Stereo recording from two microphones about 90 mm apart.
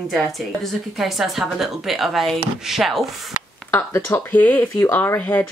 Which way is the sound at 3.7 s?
25° left (ahead or behind).